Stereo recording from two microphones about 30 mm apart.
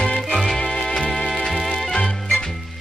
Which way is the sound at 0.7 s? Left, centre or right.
Left.